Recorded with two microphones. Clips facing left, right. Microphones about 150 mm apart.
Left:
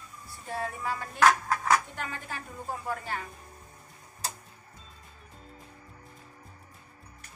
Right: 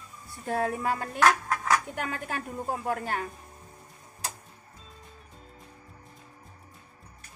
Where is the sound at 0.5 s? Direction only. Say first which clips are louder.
Right 6 dB; 50° right (ahead or behind).